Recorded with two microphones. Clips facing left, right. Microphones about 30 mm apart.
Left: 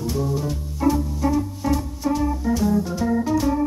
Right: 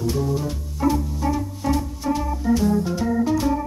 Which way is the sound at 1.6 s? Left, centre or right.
Centre.